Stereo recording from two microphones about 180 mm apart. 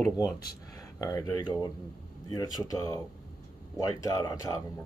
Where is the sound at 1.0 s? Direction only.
20° left (ahead or behind).